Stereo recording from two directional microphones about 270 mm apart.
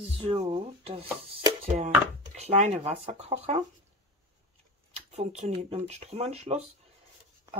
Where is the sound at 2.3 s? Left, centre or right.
Right.